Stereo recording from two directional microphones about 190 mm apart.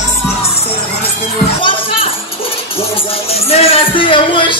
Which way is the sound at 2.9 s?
30° left (ahead or behind).